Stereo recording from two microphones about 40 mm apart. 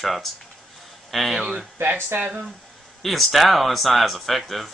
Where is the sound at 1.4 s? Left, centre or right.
Centre.